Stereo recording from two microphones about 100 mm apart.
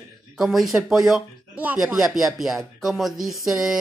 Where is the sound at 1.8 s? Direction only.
5° right (ahead or behind).